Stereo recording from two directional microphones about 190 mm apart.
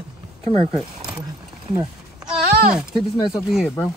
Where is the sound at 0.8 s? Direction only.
5° right (ahead or behind).